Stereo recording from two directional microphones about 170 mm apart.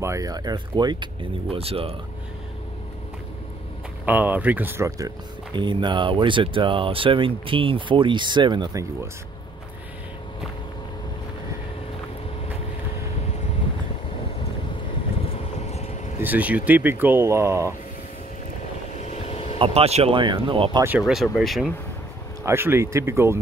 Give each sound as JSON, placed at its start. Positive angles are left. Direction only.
{"t": 0.0, "sound": "speech", "side_deg": -20}
{"t": 4.0, "sound": "speech", "side_deg": -10}
{"t": 15.2, "sound": "vehicle", "side_deg": 40}
{"t": 16.2, "sound": "speech", "side_deg": -10}
{"t": 18.9, "sound": "vehicle", "side_deg": 40}
{"t": 19.6, "sound": "speech", "side_deg": -35}
{"t": 21.0, "sound": "speech", "side_deg": 0}
{"t": 22.4, "sound": "speech", "side_deg": -15}